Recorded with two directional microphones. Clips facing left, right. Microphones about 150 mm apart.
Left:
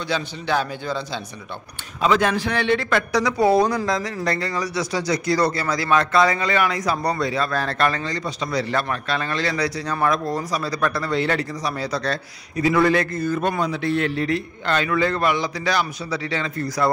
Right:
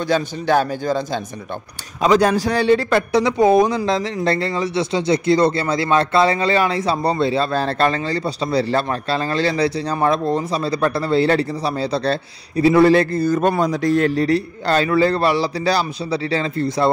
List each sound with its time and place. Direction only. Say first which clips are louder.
0.1 s a man's voice: right 6 dB; 45° right (ahead or behind); by 16.9 s 25° right (ahead or behind)